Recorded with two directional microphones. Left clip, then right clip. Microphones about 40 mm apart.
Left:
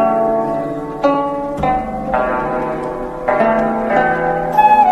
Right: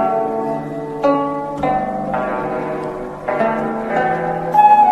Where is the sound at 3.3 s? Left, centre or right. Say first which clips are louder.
Left 4 dB; right.